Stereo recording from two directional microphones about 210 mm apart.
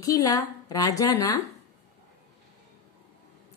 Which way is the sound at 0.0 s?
15° left (ahead or behind).